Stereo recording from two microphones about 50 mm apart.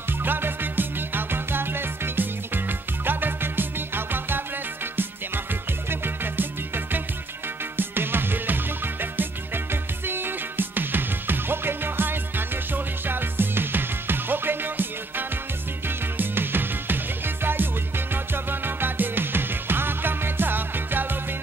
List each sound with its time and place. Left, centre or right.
0.2 s music: right
5.9 s music: right
7.7 s music: right
10.0 s music: right